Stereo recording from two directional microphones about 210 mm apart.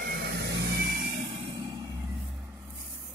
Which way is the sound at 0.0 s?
50° right (ahead or behind).